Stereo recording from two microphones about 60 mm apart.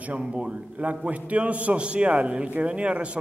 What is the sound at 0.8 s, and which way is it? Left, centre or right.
A man's voice, right.